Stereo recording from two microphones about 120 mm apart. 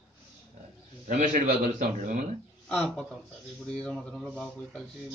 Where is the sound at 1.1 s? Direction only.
90° right.